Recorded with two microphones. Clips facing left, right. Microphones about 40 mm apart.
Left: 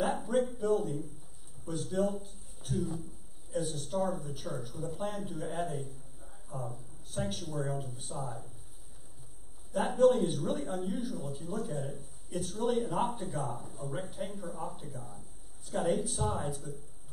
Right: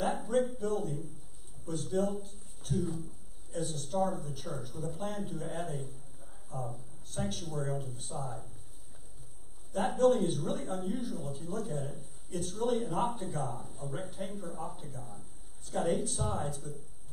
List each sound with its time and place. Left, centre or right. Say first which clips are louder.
0.0 s speech: even; centre
3.5 s speech: even; centre
9.7 s speech: left 1 dB; centre